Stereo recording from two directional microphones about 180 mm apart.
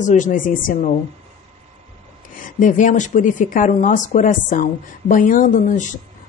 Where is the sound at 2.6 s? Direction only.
45° left (ahead or behind).